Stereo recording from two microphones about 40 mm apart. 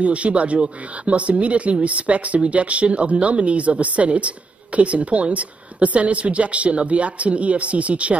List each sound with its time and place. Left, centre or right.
0.0 s a woman's voice: right